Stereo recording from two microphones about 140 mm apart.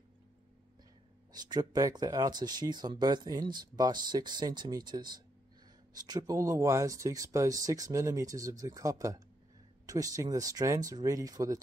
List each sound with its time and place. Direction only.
1.3 s speech: 30° right (ahead or behind)